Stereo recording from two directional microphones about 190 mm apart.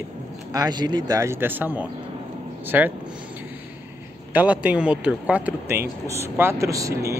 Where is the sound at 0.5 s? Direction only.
20° right (ahead or behind).